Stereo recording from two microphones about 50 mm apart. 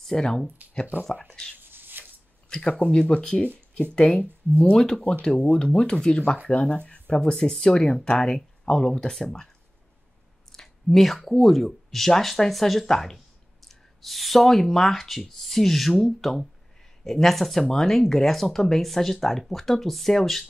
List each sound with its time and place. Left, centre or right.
0.0 s speech: centre
0.9 s speech: right
1.6 s shuffling cards: right
2.5 s speech: centre
4.7 s speech: centre
7.3 s speech: centre
10.5 s speech: centre